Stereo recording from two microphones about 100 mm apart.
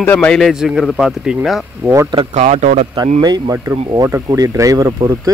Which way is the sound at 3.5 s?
30° right (ahead or behind).